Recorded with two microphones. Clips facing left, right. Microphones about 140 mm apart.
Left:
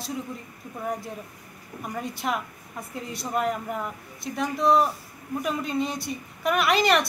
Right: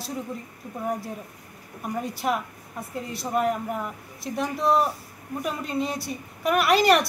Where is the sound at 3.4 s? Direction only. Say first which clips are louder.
Right 2 dB; 5° right (ahead or behind).